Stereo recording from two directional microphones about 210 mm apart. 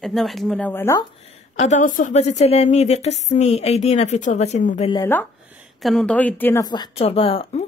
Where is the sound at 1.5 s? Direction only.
35° left (ahead or behind).